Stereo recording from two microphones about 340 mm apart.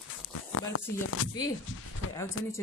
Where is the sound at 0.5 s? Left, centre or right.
Left.